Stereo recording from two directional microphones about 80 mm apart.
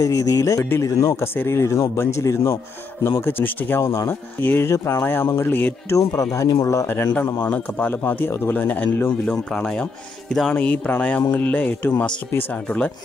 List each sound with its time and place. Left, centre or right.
0.0 s speech: left
4.6 s speech: left
5.9 s speech: left
7.2 s speech: left
9.2 s speech: centre